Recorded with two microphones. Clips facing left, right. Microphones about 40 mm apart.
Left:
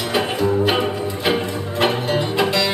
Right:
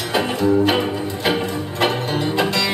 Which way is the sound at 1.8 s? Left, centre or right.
Centre.